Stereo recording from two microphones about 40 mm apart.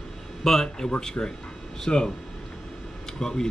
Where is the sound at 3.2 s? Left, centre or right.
Centre.